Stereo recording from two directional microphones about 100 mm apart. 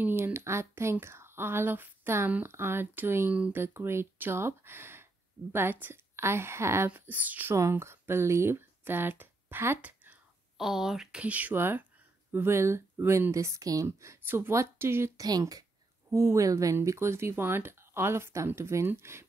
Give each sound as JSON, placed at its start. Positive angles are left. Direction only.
{"t": 0.0, "sound": "speech", "side_deg": -25}
{"t": 3.6, "sound": "speech", "side_deg": -25}
{"t": 7.5, "sound": "speech", "side_deg": -30}
{"t": 10.6, "sound": "speech", "side_deg": -5}
{"t": 15.2, "sound": "speech", "side_deg": -40}
{"t": 16.1, "sound": "speech", "side_deg": -30}